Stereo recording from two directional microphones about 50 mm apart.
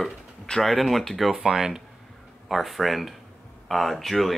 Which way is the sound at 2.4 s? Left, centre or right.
Centre.